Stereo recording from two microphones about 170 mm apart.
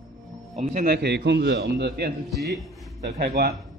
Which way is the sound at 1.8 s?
65° right (ahead or behind).